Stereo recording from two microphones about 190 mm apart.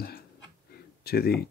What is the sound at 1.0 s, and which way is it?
Speech, 55° left (ahead or behind).